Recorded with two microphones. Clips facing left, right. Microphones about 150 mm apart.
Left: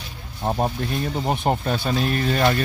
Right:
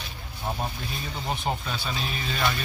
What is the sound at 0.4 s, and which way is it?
Speech, 45° left (ahead or behind).